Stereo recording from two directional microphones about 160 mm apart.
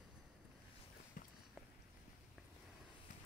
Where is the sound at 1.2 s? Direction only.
60° left (ahead or behind).